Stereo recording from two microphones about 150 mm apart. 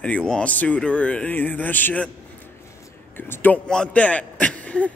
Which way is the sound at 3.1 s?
15° left (ahead or behind).